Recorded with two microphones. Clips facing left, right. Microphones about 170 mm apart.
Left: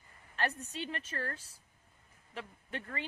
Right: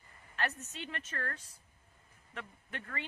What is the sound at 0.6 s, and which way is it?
Speech, 10° left (ahead or behind).